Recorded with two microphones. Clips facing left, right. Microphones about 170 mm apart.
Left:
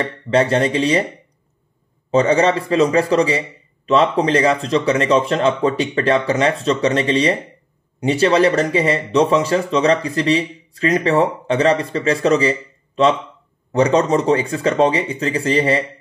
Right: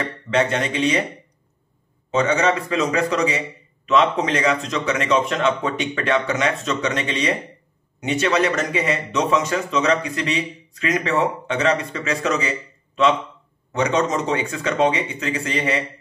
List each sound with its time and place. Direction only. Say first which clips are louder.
0.3 s speech: left 5 dB; 35° left (ahead or behind)
2.0 s a man's voice: left 4 dB; 35° left (ahead or behind)